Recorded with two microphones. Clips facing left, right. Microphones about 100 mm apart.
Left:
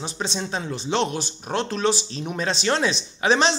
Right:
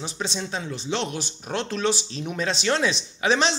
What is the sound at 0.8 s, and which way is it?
Speech, 45° left (ahead or behind).